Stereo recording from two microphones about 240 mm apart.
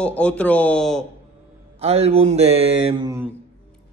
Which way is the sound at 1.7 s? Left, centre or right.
Right.